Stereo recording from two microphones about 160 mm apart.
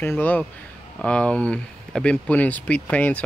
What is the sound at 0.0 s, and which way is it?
Speech, 10° left (ahead or behind).